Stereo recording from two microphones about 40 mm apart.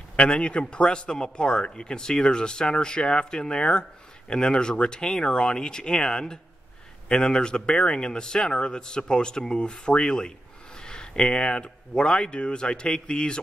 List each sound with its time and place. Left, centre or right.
0.1 s a man's voice: left
10.8 s a sound: centre
11.6 s a man's voice: left